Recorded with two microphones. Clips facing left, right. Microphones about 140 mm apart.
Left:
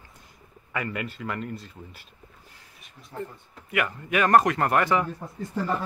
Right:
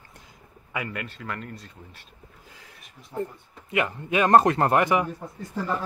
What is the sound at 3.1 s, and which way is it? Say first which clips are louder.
Speech: right 5 dB; 10° right (ahead or behind).